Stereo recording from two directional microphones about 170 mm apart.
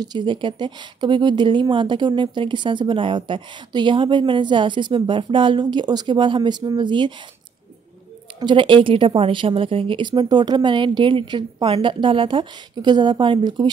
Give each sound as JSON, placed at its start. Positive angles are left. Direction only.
{"t": 0.0, "sound": "speech", "side_deg": -25}
{"t": 8.4, "sound": "speech", "side_deg": -30}